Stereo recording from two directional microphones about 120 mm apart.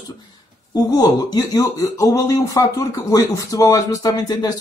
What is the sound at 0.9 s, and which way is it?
Speech, 35° left (ahead or behind).